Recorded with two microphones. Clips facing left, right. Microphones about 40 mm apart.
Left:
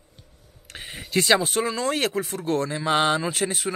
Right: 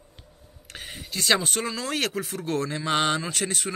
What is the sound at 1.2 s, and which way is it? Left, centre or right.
A man's voice, centre.